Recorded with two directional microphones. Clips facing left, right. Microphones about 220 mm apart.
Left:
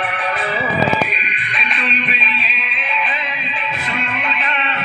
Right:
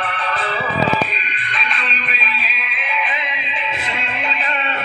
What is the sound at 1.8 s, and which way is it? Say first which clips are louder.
Music: left 4 dB; centre (ahead or behind).